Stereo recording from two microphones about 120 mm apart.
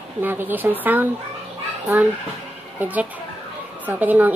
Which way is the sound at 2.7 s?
15° right (ahead or behind).